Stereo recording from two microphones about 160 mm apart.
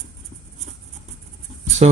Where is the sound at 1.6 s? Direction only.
45° right (ahead or behind).